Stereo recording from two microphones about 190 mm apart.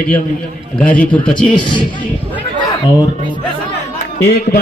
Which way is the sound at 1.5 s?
25° left (ahead or behind).